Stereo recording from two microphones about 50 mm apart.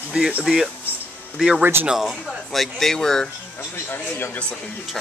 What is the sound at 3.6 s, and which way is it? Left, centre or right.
Speech, left.